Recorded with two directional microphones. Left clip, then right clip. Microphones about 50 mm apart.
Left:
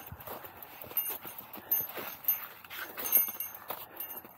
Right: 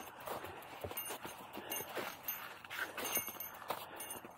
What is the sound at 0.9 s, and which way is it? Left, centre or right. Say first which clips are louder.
Clip-clop: left 1 dB; left.